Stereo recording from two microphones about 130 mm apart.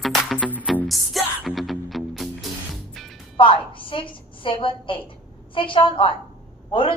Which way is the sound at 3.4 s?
40° left (ahead or behind).